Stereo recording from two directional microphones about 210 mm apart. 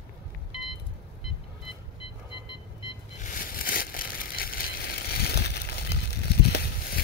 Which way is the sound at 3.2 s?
40° left (ahead or behind).